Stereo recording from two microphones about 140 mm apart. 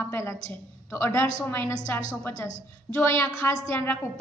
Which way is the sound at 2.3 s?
45° right (ahead or behind).